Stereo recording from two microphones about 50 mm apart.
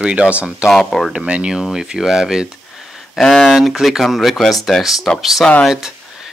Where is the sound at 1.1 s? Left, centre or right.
Right.